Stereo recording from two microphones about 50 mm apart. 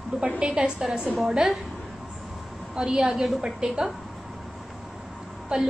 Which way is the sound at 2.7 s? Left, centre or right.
Centre.